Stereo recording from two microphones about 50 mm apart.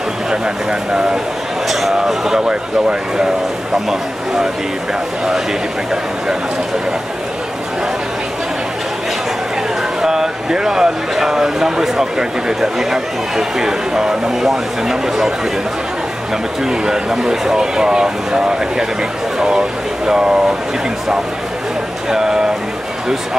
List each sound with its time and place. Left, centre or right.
0.3 s speech: centre
1.7 s speech: centre
10.0 s speech: centre
16.6 s speech: centre
20.1 s speech: centre
22.1 s speech: centre